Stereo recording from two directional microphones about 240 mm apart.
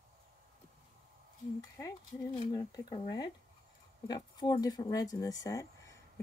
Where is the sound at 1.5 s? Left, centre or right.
Centre.